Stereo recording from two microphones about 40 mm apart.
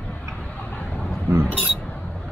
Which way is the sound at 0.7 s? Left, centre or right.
Left.